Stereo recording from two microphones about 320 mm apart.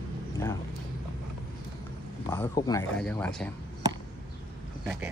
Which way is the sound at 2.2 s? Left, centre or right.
Centre.